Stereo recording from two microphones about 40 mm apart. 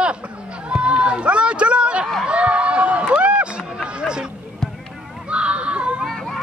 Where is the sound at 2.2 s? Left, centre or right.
Right.